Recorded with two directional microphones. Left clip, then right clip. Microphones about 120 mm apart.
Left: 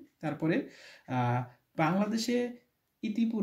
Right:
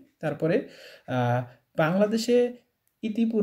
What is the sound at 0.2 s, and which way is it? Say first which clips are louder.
Speech: right 6 dB; 30° right (ahead or behind).